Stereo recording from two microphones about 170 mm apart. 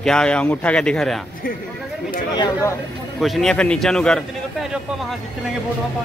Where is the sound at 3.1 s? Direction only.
Centre (ahead or behind).